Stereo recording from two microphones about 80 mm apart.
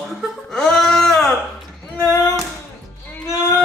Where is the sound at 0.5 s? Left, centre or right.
Centre.